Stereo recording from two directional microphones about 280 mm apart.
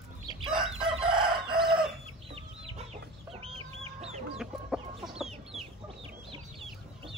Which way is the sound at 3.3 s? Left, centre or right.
Right.